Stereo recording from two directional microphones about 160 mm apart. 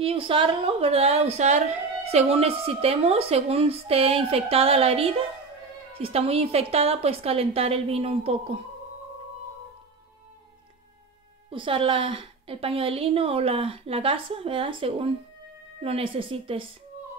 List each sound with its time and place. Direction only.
0.0 s a woman's voice: 35° right (ahead or behind)
11.5 s a woman's voice: 35° right (ahead or behind)